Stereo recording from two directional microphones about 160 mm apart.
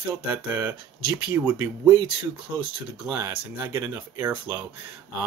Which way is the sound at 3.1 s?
15° right (ahead or behind).